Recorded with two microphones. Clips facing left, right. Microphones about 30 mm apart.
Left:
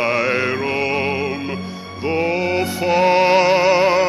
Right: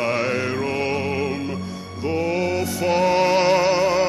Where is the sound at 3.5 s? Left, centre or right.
Centre.